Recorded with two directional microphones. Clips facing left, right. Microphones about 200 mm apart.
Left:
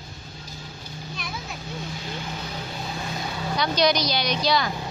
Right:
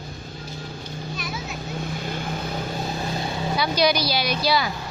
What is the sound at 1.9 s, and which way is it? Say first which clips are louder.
Vehicle: right 4 dB; 55° right (ahead or behind).